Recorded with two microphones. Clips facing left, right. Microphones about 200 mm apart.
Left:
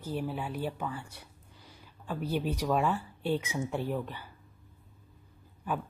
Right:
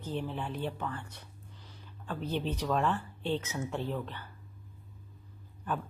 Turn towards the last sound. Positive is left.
turn(degrees=10)  # may be behind; listen again after turning